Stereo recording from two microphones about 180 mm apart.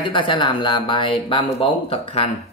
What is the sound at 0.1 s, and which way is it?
Speech, 25° left (ahead or behind).